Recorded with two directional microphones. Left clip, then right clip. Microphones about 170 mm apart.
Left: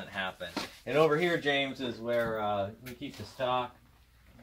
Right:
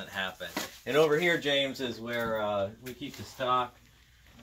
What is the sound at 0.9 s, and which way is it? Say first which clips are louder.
Speech: right 1 dB; 25° right (ahead or behind).